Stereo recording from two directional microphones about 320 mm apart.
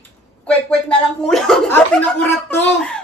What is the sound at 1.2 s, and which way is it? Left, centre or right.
Speech, centre.